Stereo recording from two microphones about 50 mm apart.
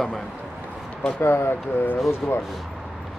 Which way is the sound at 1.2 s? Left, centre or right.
Left.